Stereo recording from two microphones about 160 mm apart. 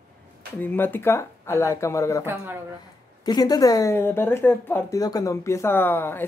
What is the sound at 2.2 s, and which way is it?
Speech, 15° right (ahead or behind).